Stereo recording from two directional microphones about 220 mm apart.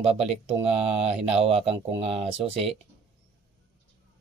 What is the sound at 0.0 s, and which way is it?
Speech, 25° right (ahead or behind).